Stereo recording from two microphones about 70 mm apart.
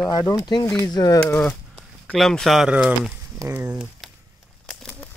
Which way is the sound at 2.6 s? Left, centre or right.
Centre.